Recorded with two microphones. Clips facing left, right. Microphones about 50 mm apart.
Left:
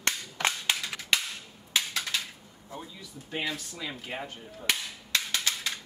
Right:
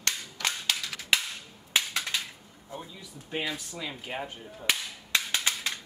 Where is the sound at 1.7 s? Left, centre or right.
Right.